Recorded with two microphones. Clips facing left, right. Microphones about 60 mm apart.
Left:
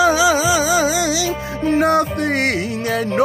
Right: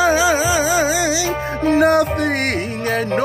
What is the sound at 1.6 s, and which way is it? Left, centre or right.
Music, right.